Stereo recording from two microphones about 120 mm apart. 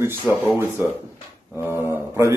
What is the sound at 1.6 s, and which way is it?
Speech, 20° right (ahead or behind).